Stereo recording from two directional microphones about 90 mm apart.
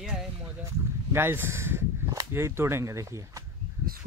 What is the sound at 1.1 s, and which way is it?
Speech, 25° right (ahead or behind).